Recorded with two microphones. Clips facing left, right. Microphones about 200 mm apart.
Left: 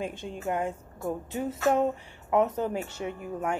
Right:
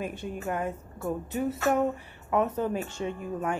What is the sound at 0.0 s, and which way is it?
A woman's voice, 20° left (ahead or behind).